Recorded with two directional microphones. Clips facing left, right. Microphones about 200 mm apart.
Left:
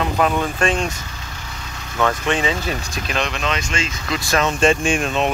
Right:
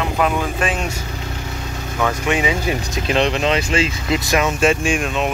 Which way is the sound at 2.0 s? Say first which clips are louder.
Even; 10° right (ahead or behind).